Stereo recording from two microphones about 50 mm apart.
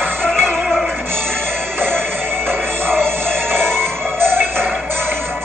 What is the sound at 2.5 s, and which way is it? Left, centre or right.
Music, right.